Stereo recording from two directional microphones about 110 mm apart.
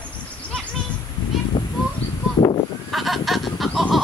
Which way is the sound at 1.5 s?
40° left (ahead or behind).